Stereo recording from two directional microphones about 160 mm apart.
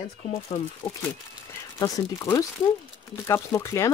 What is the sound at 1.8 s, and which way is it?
Speech, 15° left (ahead or behind).